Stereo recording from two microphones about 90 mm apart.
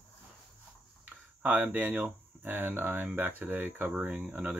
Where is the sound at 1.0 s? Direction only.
20° right (ahead or behind).